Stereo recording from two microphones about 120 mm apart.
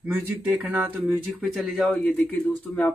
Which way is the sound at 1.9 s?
10° left (ahead or behind).